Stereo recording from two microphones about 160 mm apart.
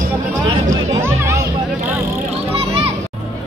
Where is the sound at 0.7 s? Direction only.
20° right (ahead or behind).